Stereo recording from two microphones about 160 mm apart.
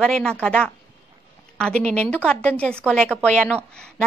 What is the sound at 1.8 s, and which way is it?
A woman's voice, 5° left (ahead or behind).